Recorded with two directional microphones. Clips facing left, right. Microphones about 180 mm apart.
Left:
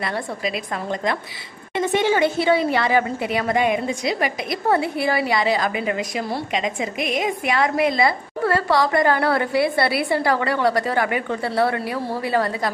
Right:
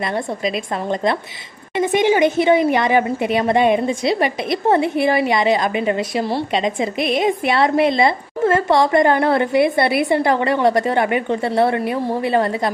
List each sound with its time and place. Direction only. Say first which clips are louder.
0.0 s a woman's voice: right 4 dB; 20° right (ahead or behind)
1.8 s a woman's voice: right 4 dB; 15° right (ahead or behind)